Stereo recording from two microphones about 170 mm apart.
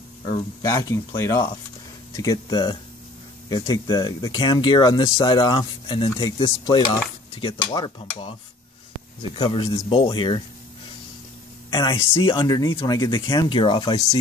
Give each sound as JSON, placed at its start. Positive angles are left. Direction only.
{"t": 0.6, "sound": "speech", "side_deg": 20}
{"t": 11.7, "sound": "speech", "side_deg": 30}